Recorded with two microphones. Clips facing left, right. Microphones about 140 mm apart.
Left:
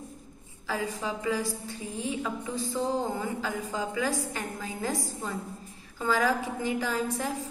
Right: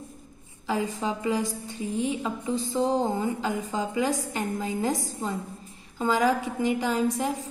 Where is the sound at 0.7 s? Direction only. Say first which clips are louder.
Right 4 dB; 25° right (ahead or behind).